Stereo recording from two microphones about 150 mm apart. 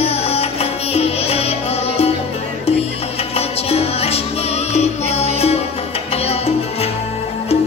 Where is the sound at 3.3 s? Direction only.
40° left (ahead or behind).